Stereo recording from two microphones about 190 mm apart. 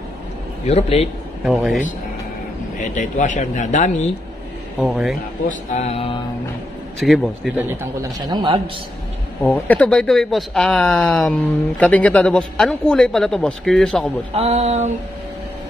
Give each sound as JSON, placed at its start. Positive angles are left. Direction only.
{"t": 0.7, "sound": "a man's voice", "side_deg": 35}
{"t": 1.4, "sound": "speech", "side_deg": 0}
{"t": 2.8, "sound": "a man's voice", "side_deg": 40}
{"t": 4.7, "sound": "speech", "side_deg": 0}
{"t": 5.5, "sound": "a man's voice", "side_deg": 35}
{"t": 7.0, "sound": "speech", "side_deg": 0}
{"t": 8.3, "sound": "a man's voice", "side_deg": -20}
{"t": 9.4, "sound": "speech", "side_deg": 5}
{"t": 14.3, "sound": "a sound", "side_deg": -35}